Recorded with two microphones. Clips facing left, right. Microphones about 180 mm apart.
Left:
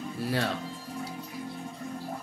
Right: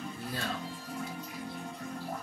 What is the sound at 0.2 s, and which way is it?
Music, 75° left (ahead or behind).